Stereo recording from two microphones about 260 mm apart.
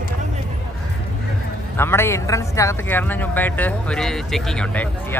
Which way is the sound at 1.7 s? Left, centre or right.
Centre.